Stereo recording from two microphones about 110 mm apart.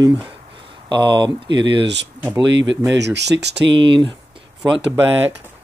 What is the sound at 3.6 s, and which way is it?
Speech, 50° right (ahead or behind).